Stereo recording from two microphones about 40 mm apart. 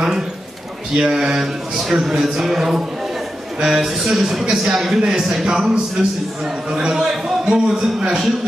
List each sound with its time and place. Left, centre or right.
0.9 s a man's voice: centre
1.4 s a man's voice: centre
4.5 s a man's voice: centre